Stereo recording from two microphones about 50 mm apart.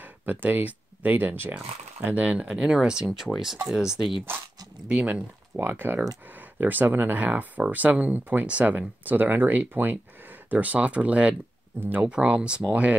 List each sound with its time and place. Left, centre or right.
0.0 s speech: right
2.0 s speech: right; by 4.1 s centre
4.8 s speech: right
5.6 s speech: right
12.1 s speech: right